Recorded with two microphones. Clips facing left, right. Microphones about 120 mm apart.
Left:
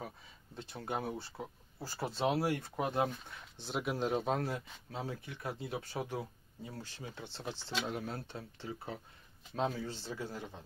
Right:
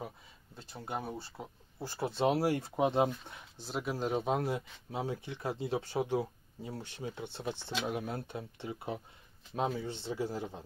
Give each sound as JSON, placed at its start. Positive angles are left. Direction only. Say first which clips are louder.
{"t": 0.6, "sound": "speech", "louder": "left 1 dB", "side_deg": -5}
{"t": 2.1, "sound": "speech", "louder": "right 3 dB", "side_deg": -10}
{"t": 2.4, "sound": "speech", "louder": "right 5 dB", "side_deg": -30}
{"t": 3.6, "sound": "speech", "louder": "even", "side_deg": 0}
{"t": 4.4, "sound": "speech", "louder": "right 3 dB", "side_deg": -20}